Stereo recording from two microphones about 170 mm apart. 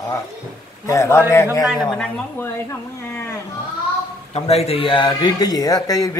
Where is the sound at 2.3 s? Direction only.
15° left (ahead or behind).